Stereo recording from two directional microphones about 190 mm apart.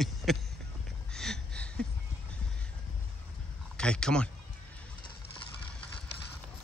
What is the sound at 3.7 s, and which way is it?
Speech, 5° left (ahead or behind).